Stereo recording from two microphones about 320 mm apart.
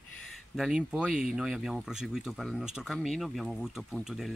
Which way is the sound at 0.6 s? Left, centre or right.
Centre.